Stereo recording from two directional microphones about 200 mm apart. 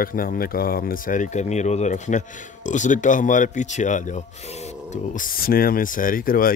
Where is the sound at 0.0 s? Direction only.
45° left (ahead or behind).